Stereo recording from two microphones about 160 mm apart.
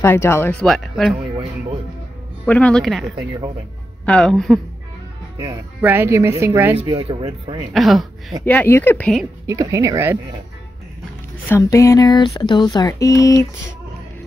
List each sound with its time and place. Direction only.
0.0 s speech: 15° left (ahead or behind)
0.5 s speech: 5° left (ahead or behind)
2.4 s speech: 10° left (ahead or behind)
5.8 s a woman's voice: 15° right (ahead or behind)
6.9 s speech: 30° right (ahead or behind)
7.7 s speech: centre (ahead or behind)
8.5 s speech: 10° left (ahead or behind)
9.5 s speech: 20° right (ahead or behind)
11.4 s speech: 15° left (ahead or behind)